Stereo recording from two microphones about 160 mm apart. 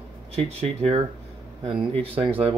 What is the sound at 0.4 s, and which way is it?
Speech, 40° right (ahead or behind).